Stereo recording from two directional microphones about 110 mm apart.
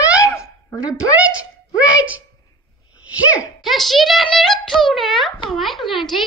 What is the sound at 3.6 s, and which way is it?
A child's voice, centre (ahead or behind).